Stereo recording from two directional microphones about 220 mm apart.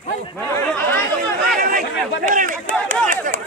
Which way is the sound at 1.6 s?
40° right (ahead or behind).